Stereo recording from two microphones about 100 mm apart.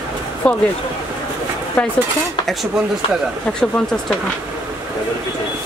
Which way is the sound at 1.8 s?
10° left (ahead or behind).